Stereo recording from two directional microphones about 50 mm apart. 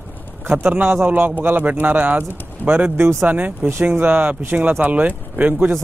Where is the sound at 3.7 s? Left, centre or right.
Right.